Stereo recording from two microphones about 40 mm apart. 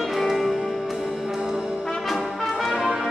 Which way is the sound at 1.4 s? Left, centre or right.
Centre.